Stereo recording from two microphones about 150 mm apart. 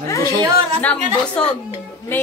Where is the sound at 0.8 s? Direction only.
10° left (ahead or behind).